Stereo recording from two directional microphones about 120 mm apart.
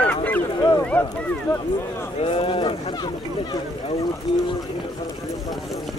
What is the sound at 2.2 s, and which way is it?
Speech, 50° left (ahead or behind).